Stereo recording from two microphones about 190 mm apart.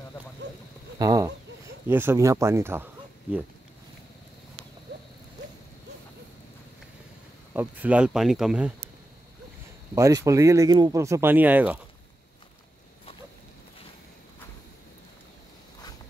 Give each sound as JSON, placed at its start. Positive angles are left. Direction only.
{"t": 0.9, "sound": "a sound", "side_deg": -20}
{"t": 1.9, "sound": "speech", "side_deg": -10}
{"t": 7.5, "sound": "speech", "side_deg": -5}
{"t": 9.9, "sound": "speech", "side_deg": -15}